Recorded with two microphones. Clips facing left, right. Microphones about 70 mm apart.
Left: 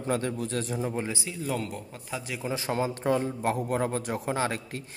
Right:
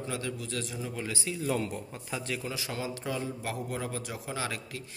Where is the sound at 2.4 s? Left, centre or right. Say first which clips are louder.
Left 7 dB; left.